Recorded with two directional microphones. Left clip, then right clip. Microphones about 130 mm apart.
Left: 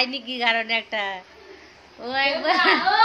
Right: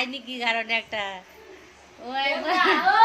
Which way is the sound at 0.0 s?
20° left (ahead or behind).